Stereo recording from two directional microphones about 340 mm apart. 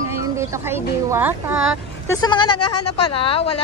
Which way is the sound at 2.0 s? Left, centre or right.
Centre.